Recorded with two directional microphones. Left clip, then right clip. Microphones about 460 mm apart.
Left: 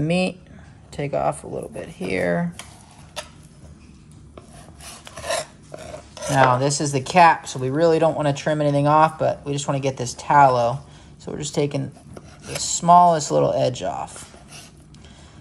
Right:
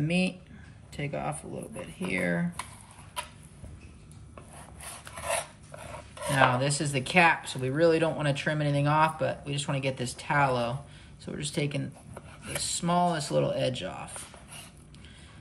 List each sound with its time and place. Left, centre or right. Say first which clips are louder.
0.0 s speech: left 8 dB; left
6.3 s speech: left 7 dB; centre